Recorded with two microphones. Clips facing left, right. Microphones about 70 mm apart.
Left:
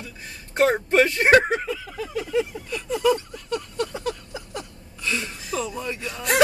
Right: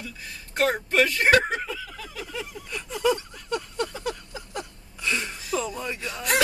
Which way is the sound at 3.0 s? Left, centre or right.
Centre.